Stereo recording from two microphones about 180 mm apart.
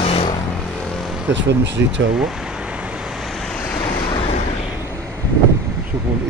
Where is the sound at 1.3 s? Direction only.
75° right (ahead or behind).